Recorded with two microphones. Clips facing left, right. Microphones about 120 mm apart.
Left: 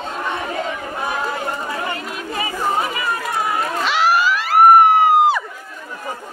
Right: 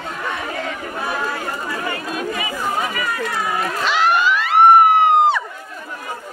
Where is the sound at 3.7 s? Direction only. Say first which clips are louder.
Even; centre (ahead or behind).